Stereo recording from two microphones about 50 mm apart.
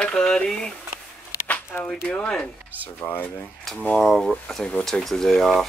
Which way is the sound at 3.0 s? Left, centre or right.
Left.